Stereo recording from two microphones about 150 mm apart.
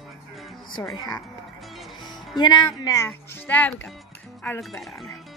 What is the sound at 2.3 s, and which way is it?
Speech, 30° left (ahead or behind).